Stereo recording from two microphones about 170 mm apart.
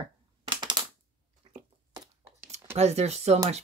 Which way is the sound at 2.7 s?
40° right (ahead or behind).